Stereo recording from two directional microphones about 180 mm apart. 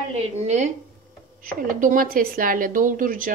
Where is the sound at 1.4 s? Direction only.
45° right (ahead or behind).